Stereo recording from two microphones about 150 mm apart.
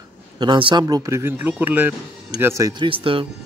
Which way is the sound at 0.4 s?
30° right (ahead or behind).